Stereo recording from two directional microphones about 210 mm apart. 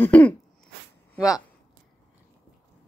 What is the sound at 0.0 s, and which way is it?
Throat clearing, 5° left (ahead or behind).